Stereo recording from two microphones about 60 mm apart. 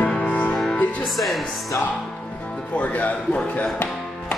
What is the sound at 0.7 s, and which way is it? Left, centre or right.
Speech, left.